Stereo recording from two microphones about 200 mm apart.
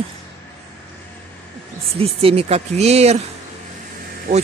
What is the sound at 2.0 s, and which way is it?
Speech, 30° right (ahead or behind).